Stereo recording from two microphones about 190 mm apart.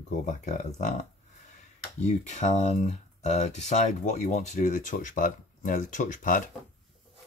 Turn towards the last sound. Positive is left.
turn(degrees=45)  # may be behind; listen again after turning